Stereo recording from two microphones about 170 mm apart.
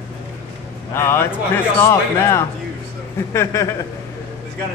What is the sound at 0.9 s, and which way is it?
A man's voice, 15° left (ahead or behind).